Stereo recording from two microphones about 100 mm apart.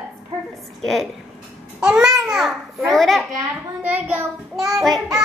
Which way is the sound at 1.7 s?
5° right (ahead or behind).